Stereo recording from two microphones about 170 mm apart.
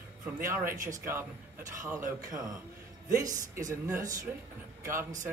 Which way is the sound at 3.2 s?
20° right (ahead or behind).